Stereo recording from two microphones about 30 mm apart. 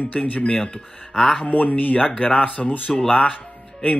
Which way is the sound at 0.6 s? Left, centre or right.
Left.